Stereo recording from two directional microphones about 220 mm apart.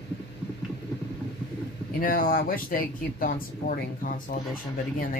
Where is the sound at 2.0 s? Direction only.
40° left (ahead or behind).